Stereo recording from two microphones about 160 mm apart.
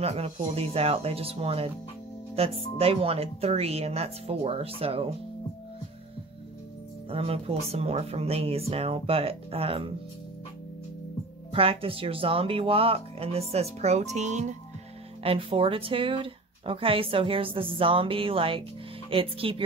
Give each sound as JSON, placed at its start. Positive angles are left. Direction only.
{"t": 0.0, "sound": "speech", "side_deg": -40}
{"t": 7.1, "sound": "speech", "side_deg": -40}
{"t": 11.5, "sound": "speech", "side_deg": -35}
{"t": 15.2, "sound": "speech", "side_deg": -35}